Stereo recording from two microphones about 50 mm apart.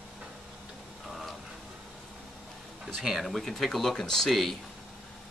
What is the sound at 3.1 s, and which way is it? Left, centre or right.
Speech, centre.